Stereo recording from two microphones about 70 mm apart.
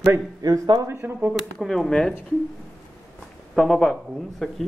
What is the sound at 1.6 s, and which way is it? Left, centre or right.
Speech, centre.